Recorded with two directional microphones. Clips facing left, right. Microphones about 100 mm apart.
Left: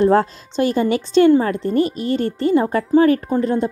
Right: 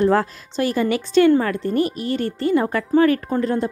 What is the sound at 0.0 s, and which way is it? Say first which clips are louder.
A woman's voice: left 3 dB; 25° left (ahead or behind).